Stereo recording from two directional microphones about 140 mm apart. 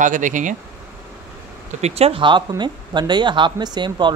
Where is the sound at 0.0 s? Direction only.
65° right (ahead or behind).